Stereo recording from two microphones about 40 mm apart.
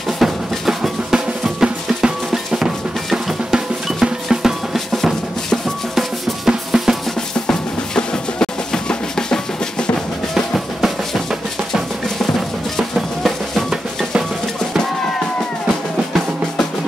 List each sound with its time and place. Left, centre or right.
0.2 s drum: centre
4.7 s drum: centre
5.9 s drum: centre
7.3 s drum: centre
10.3 s drum: centre